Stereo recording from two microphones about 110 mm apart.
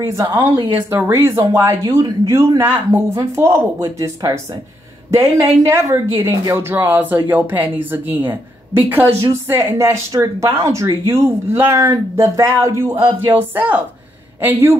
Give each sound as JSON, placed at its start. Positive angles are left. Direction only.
{"t": 0.0, "sound": "speech", "side_deg": -25}
{"t": 5.7, "sound": "speech", "side_deg": -25}
{"t": 12.9, "sound": "a sound", "side_deg": -20}
{"t": 14.4, "sound": "speech", "side_deg": -20}